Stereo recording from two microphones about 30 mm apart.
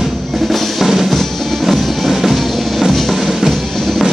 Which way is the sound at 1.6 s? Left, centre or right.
Centre.